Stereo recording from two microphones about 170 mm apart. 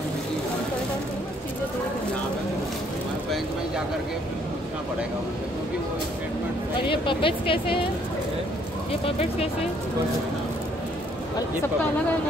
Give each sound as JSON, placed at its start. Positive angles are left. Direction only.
{"t": 6.9, "sound": "speech", "side_deg": 30}